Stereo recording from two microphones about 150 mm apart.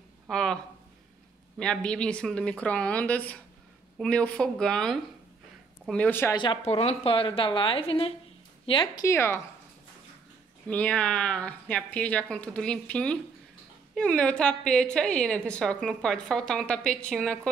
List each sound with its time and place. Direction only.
0.3 s a woman's voice: 5° left (ahead or behind)
1.6 s a woman's voice: 5° left (ahead or behind)
6.4 s a woman's voice: 40° left (ahead or behind)
9.0 s speech: 15° left (ahead or behind)
10.7 s a woman's voice: 10° left (ahead or behind)